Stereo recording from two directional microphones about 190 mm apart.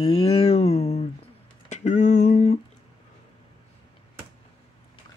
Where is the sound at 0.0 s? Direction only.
30° left (ahead or behind).